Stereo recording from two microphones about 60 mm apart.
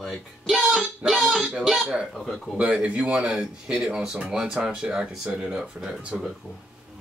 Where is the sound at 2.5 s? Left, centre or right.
Centre.